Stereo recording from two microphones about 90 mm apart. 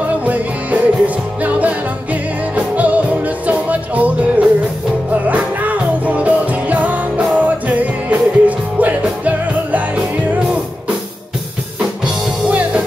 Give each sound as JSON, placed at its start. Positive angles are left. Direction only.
{"t": 0.2, "sound": "music", "side_deg": -15}
{"t": 12.4, "sound": "music", "side_deg": -15}